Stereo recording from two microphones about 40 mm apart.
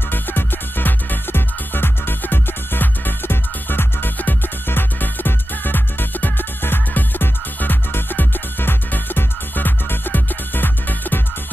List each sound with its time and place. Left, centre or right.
0.1 s music: left